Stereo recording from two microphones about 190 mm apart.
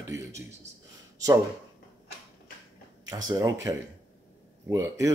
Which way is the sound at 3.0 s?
20° right (ahead or behind).